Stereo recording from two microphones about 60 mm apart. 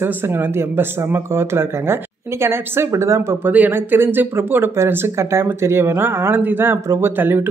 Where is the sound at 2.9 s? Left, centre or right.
Right.